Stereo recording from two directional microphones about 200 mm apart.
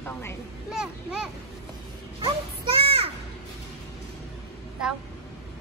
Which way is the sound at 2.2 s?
25° right (ahead or behind).